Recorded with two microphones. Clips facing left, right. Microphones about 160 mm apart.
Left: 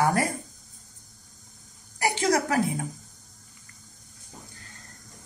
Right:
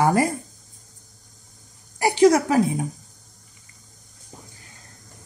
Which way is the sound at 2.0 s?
20° right (ahead or behind).